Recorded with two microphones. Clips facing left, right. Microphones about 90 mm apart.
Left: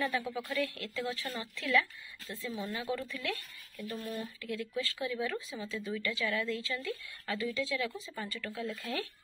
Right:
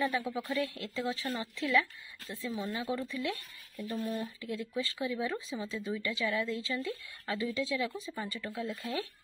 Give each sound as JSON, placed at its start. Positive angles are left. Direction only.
{"t": 0.0, "sound": "speech", "side_deg": -20}